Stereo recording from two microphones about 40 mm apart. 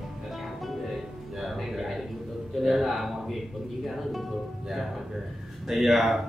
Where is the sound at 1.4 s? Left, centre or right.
Centre.